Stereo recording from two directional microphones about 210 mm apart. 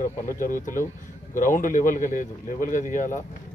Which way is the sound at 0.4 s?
40° left (ahead or behind).